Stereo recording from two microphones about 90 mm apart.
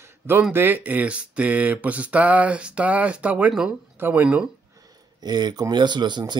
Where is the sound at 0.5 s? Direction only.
20° right (ahead or behind).